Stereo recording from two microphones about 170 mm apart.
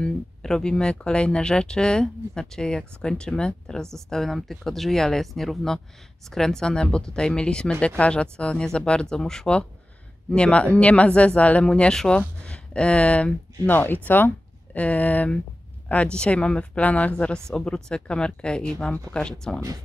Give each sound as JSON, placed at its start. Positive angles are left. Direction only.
{"t": 0.0, "sound": "speech", "side_deg": 5}